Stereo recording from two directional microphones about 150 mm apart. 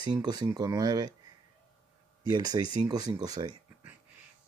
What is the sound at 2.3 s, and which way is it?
Speech, 25° right (ahead or behind).